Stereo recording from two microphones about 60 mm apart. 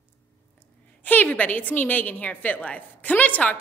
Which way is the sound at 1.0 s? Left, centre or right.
Left.